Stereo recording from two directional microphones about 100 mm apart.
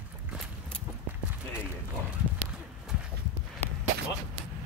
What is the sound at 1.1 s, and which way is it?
Clip-clop, 15° right (ahead or behind).